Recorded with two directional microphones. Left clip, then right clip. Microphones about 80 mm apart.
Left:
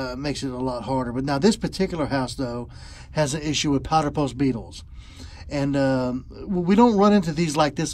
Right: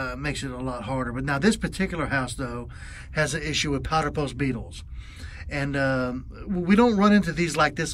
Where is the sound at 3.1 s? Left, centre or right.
Left.